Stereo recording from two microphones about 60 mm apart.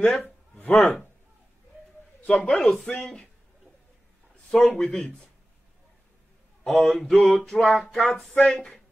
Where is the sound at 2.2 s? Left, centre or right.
Left.